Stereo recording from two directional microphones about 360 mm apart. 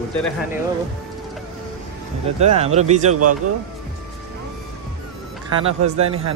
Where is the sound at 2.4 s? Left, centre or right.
Centre.